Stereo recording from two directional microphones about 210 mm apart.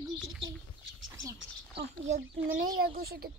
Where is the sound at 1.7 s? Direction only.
30° right (ahead or behind).